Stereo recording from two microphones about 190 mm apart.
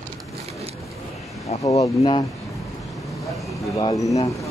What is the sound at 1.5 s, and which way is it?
Speech, 35° left (ahead or behind).